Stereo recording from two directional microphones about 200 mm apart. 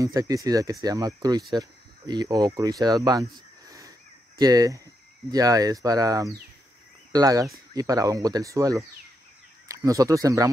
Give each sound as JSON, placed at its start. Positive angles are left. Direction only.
{"t": 0.0, "sound": "speech", "side_deg": -15}
{"t": 3.6, "sound": "a sound", "side_deg": -15}
{"t": 4.4, "sound": "speech", "side_deg": -20}